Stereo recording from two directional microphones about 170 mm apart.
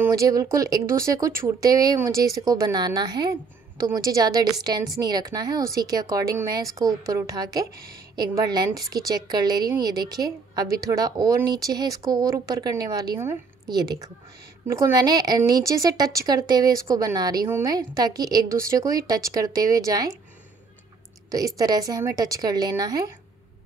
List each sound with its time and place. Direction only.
0.0 s a woman's voice: 20° right (ahead or behind)
21.3 s a woman's voice: 20° right (ahead or behind)